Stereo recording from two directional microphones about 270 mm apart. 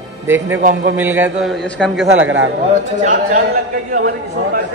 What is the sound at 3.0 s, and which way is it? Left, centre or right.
A man's voice, right.